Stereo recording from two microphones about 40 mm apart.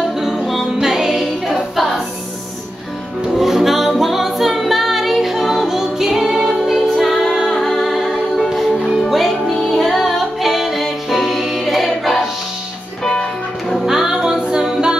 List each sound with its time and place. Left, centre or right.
0.2 s music: centre
3.3 s music: centre
13.8 s music: centre
14.4 s singing: right